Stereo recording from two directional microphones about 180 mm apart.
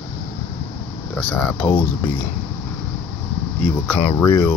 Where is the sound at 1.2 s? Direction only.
5° left (ahead or behind).